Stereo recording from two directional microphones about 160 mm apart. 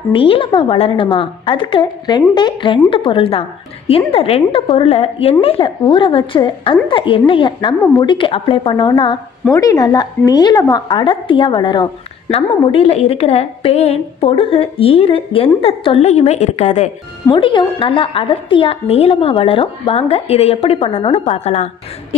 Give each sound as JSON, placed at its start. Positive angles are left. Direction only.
{"t": 0.1, "sound": "a woman's voice", "side_deg": 35}
{"t": 17.3, "sound": "a woman's voice", "side_deg": 30}